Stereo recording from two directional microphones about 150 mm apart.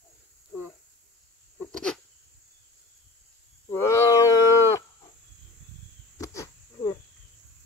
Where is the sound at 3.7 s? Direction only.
20° left (ahead or behind).